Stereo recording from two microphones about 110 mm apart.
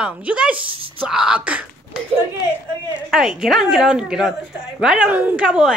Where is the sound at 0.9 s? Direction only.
5° right (ahead or behind).